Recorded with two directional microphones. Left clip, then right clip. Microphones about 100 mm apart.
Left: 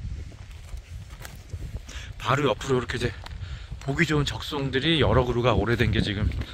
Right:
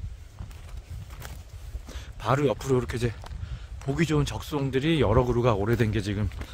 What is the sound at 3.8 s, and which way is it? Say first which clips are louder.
Speech: left 2 dB; 20° right (ahead or behind).